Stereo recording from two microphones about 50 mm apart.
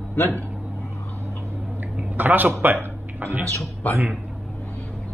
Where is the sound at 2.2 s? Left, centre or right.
Right.